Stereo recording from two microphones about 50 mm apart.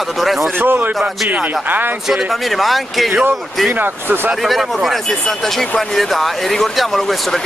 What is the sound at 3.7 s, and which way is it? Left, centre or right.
Speech, right.